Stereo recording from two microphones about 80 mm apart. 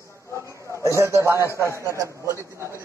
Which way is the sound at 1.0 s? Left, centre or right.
Right.